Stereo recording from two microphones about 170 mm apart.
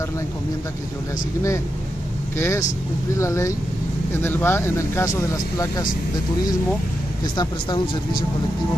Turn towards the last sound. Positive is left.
turn(degrees=25)  # may be behind; listen again after turning